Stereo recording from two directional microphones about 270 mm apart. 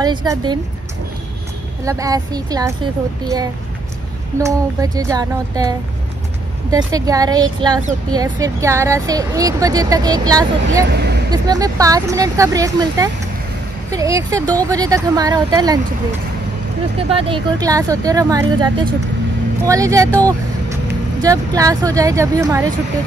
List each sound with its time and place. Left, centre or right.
0.0 s speech: centre
1.9 s speech: centre
10.9 s speech: right
11.2 s speech: centre
17.1 s speech: centre